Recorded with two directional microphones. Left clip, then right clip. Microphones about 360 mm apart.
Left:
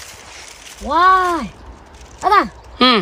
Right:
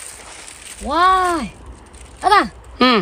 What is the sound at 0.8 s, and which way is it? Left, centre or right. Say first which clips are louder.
Speech: left 2 dB; centre.